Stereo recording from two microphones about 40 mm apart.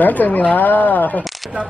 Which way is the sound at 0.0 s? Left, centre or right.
Left.